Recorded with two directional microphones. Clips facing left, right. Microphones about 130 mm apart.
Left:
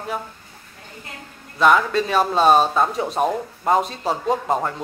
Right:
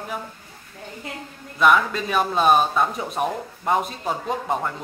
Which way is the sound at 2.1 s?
30° left (ahead or behind).